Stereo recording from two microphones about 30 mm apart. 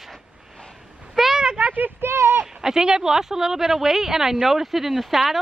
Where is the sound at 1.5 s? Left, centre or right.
Right.